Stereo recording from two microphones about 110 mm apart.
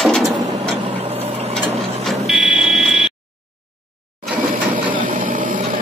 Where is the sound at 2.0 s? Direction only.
5° right (ahead or behind).